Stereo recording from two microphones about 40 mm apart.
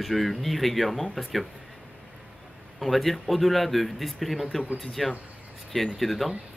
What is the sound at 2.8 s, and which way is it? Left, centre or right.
Speech, centre.